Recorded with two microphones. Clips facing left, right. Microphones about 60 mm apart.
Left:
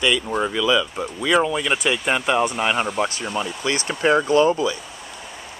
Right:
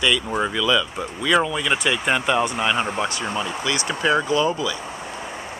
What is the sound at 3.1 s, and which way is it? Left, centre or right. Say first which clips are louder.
Speech: right 2 dB; right.